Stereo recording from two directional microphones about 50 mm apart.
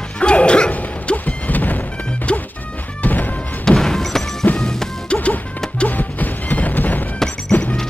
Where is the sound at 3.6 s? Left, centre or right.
Centre.